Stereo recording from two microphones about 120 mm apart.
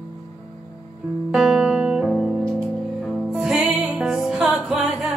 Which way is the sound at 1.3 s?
5° right (ahead or behind).